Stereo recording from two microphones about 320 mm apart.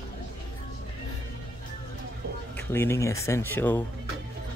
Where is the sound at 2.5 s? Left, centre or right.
Centre.